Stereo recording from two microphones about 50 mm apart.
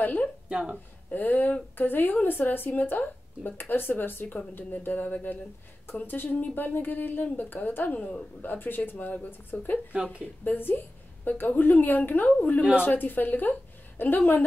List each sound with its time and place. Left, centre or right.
0.0 s speech: left
0.5 s speech: centre
1.1 s speech: left
4.7 s speech: left